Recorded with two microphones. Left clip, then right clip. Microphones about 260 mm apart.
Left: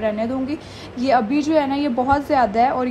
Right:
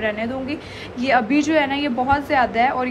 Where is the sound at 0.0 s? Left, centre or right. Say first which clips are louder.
Left 1 dB; left.